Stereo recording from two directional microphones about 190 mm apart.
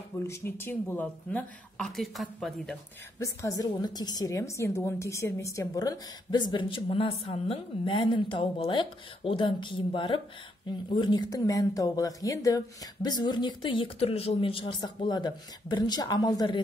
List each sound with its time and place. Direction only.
0.3 s speech: 10° left (ahead or behind)
3.2 s a woman's voice: 20° left (ahead or behind)